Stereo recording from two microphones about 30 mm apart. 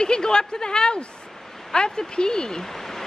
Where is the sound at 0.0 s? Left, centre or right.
Left.